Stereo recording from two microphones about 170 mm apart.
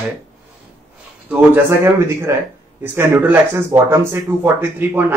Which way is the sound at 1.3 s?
15° right (ahead or behind).